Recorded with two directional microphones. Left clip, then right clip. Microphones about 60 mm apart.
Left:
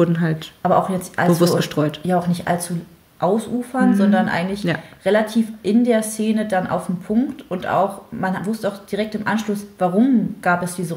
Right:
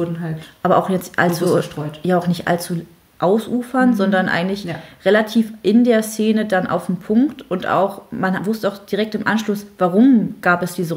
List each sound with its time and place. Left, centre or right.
0.0 s speech: left
0.6 s speech: right
1.6 s speech: left
2.0 s speech: right